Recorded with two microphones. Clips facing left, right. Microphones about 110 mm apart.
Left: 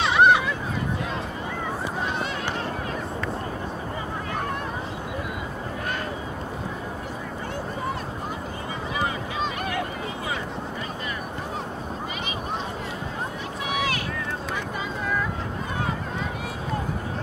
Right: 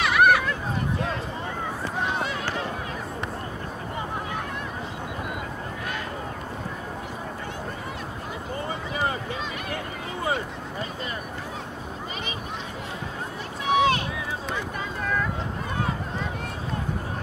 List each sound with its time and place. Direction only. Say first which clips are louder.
0.0 s hubbub: left 1 dB; 25° left (ahead or behind)
13.7 s boat: right 7 dB; 25° right (ahead or behind)